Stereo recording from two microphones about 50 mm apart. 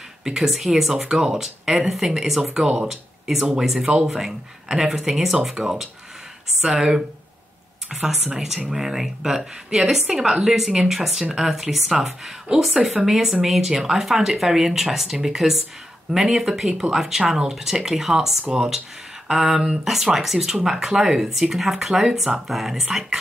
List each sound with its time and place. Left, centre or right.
0.2 s a woman's voice: centre
2.6 s a woman's voice: centre
2.9 s a woman's voice: centre
3.8 s a woman's voice: centre
19.2 s a sound: centre
19.6 s a woman's voice: centre